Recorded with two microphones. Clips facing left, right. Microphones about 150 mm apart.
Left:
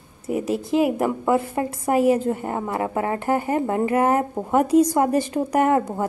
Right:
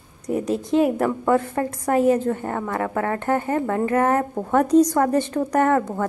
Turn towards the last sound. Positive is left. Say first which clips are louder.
# even
turn(degrees=20)  # may be behind; listen again after turning